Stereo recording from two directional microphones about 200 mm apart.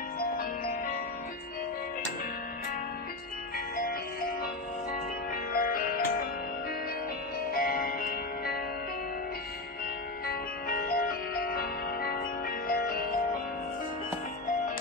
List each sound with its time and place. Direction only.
3.5 s music: 50° left (ahead or behind)
7.5 s music: 45° left (ahead or behind)
10.2 s music: 45° left (ahead or behind)